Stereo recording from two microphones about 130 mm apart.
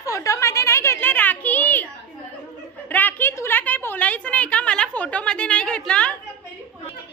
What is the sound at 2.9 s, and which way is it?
A woman's voice, 15° left (ahead or behind).